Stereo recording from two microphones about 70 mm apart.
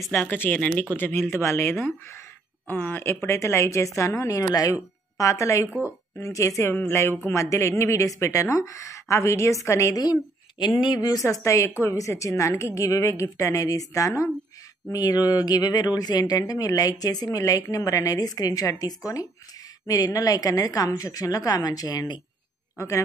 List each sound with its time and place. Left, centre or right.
0.1 s speech: left
2.7 s speech: left
3.1 s a woman's voice: left
10.8 s a woman's voice: left
22.8 s a woman's voice: left